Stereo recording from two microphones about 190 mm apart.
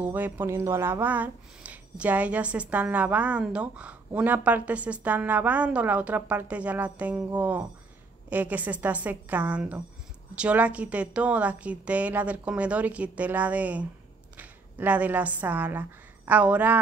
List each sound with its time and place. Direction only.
0.0 s a woman's voice: 10° right (ahead or behind)